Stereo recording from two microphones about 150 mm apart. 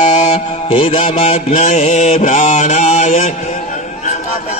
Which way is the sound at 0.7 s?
35° left (ahead or behind).